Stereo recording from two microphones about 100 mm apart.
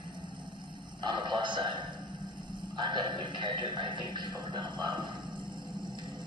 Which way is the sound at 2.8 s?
50° right (ahead or behind).